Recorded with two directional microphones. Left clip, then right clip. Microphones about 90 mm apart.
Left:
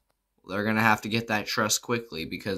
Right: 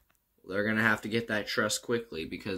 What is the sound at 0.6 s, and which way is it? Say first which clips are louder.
Speech: left 4 dB; 60° left (ahead or behind).